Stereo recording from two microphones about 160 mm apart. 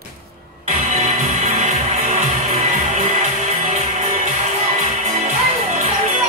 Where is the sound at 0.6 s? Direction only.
40° right (ahead or behind).